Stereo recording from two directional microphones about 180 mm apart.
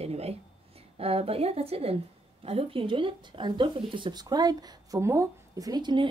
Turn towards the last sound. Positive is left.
turn(degrees=-25)  # may be behind; listen again after turning